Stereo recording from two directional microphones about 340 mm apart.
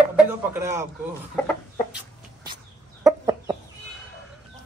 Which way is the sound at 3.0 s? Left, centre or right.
Centre.